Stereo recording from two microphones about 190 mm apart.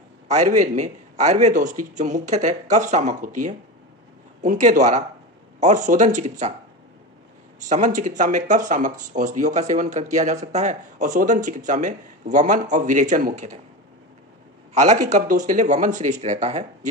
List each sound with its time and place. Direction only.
0.3 s speech: 40° right (ahead or behind)
7.6 s speech: 40° right (ahead or behind)
14.7 s speech: 35° right (ahead or behind)